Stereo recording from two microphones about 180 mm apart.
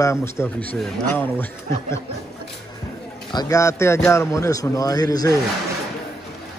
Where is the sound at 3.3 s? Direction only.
15° left (ahead or behind).